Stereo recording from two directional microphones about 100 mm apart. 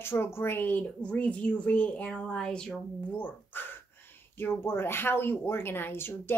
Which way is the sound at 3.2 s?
20° left (ahead or behind).